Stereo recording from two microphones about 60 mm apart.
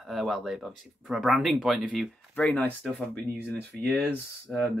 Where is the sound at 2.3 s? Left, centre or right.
Left.